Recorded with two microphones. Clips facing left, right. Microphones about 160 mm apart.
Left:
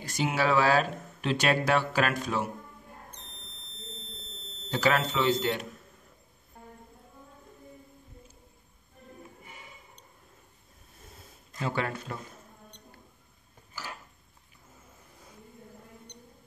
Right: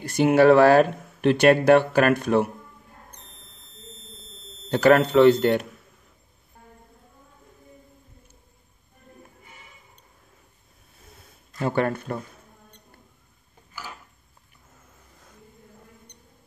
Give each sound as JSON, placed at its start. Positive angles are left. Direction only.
{"t": 0.0, "sound": "speech", "side_deg": -60}
{"t": 4.6, "sound": "speech", "side_deg": -55}
{"t": 11.6, "sound": "speech", "side_deg": -50}